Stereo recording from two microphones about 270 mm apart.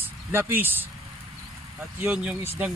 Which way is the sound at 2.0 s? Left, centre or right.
Centre.